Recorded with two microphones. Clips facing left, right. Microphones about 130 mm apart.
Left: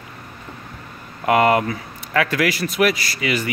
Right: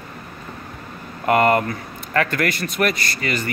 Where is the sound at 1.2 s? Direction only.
Centre (ahead or behind).